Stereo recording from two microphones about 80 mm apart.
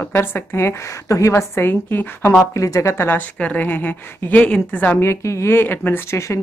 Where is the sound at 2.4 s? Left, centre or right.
Left.